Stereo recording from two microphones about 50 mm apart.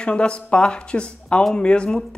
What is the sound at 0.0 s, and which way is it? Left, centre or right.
Speech, centre.